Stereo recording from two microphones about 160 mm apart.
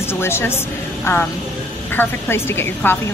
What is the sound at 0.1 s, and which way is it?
Speech, 15° left (ahead or behind).